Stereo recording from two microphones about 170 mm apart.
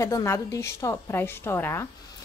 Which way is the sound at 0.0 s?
15° left (ahead or behind).